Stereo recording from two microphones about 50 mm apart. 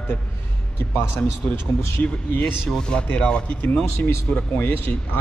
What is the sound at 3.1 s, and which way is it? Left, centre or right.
Speech, left.